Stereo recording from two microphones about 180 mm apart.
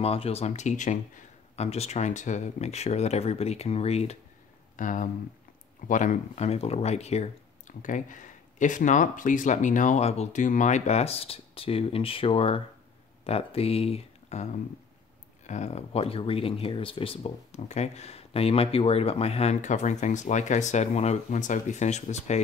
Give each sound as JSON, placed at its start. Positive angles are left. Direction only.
{"t": 0.0, "sound": "speech", "side_deg": 35}
{"t": 4.7, "sound": "speech", "side_deg": 45}